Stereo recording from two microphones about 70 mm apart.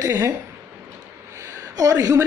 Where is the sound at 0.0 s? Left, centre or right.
Right.